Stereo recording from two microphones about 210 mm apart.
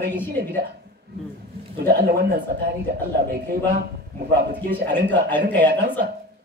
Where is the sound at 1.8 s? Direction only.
45° right (ahead or behind).